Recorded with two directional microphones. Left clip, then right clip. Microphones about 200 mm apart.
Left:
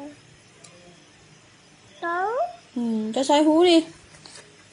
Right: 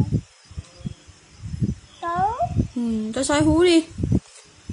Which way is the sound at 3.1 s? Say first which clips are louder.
Left 2 dB; 15° right (ahead or behind).